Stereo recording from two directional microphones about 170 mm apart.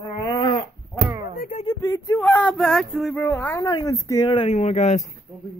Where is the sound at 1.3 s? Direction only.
50° left (ahead or behind).